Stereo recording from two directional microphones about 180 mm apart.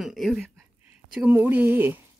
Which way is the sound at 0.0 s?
Centre (ahead or behind).